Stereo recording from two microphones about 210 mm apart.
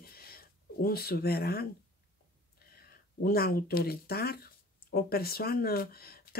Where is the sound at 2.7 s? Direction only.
45° left (ahead or behind).